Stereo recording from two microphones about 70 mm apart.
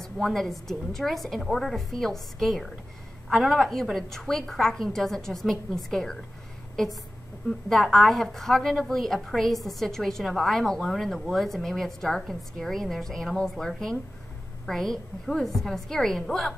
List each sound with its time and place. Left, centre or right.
0.0 s a woman's voice: centre
7.4 s a woman's voice: centre